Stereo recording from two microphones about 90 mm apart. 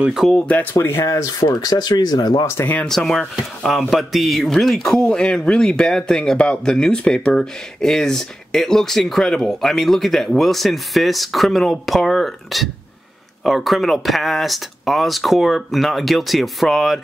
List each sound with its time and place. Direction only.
0.0 s speech: 5° right (ahead or behind)
0.3 s speech: 15° left (ahead or behind)
0.8 s speech: 30° left (ahead or behind); by 2.4 s 50° left (ahead or behind)
2.4 s speech: 25° left (ahead or behind)
2.9 s speech: 5° left (ahead or behind)